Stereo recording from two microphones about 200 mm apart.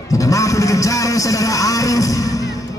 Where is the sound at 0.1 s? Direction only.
15° left (ahead or behind).